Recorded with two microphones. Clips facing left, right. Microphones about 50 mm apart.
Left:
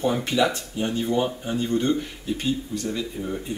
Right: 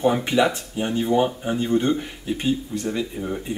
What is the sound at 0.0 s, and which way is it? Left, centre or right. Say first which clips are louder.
Speech: right 3 dB; centre.